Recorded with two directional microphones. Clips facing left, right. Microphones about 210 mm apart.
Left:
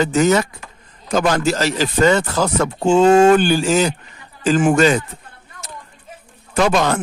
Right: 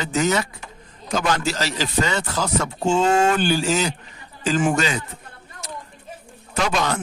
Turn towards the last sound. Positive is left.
turn(degrees=50)  # may be behind; listen again after turning